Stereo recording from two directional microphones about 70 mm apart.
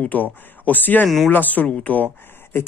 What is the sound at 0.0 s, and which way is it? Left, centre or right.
Speech, left.